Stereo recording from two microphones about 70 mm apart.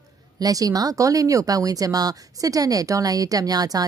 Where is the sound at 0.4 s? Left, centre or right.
Right.